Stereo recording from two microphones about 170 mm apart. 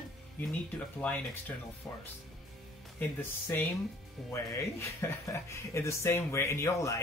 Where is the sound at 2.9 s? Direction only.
10° left (ahead or behind).